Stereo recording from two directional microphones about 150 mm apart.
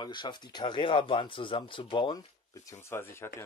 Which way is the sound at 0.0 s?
30° left (ahead or behind).